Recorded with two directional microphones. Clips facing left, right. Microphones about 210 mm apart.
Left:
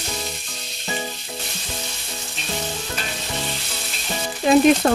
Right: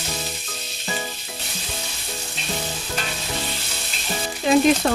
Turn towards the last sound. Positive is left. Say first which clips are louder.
# left 3 dB
turn(degrees=50)  # may be behind; listen again after turning